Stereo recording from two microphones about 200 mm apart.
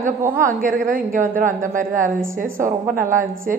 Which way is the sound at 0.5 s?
40° right (ahead or behind).